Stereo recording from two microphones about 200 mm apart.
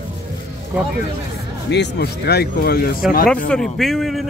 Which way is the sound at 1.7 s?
55° left (ahead or behind).